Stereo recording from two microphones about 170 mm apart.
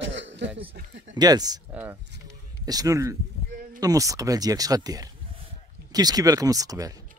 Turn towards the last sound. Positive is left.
turn(degrees=-20)  # may be behind; listen again after turning